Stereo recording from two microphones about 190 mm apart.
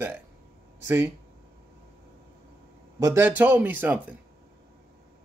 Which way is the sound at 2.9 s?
15° right (ahead or behind).